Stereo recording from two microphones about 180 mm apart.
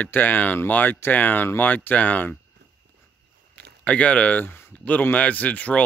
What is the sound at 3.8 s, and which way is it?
Speech, 5° left (ahead or behind).